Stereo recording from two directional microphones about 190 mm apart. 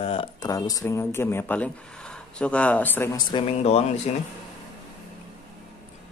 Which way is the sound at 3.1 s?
30° left (ahead or behind).